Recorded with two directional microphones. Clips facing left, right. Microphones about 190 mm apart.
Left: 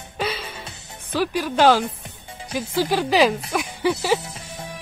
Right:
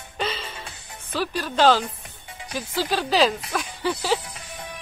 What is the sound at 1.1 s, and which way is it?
Speech, 10° left (ahead or behind).